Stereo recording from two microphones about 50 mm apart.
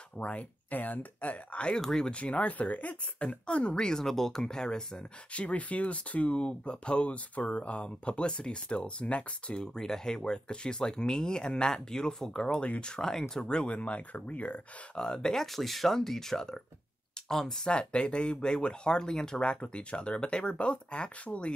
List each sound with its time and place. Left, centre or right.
0.2 s speech: left
1.8 s speech: centre
2.1 s speech: left
5.3 s speech: left
15.0 s speech: centre
17.6 s speech: centre